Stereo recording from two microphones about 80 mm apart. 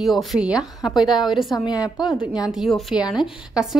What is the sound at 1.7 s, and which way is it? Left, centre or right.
Speech, left.